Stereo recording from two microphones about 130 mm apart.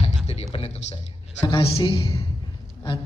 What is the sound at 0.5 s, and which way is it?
Music, 50° left (ahead or behind).